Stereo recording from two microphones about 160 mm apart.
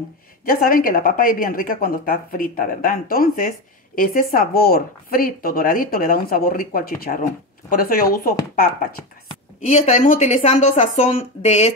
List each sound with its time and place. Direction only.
0.5 s a woman's voice: 65° left (ahead or behind)
9.7 s a woman's voice: 50° left (ahead or behind)